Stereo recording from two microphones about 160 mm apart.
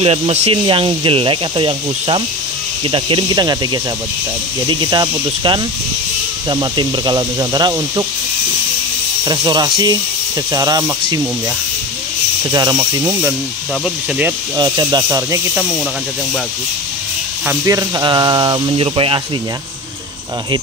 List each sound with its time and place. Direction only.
0.0 s speech: 40° right (ahead or behind); by 8.0 s 25° right (ahead or behind)
9.2 s speech: 25° right (ahead or behind)
12.4 s speech: 25° right (ahead or behind)
14.6 s speech: 25° right (ahead or behind)
17.6 s speech: 20° right (ahead or behind)